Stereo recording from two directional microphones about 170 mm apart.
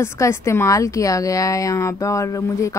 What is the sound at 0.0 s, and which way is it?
A woman's voice, 15° left (ahead or behind).